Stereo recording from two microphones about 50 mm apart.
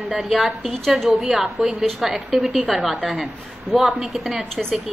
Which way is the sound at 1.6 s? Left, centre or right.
Centre.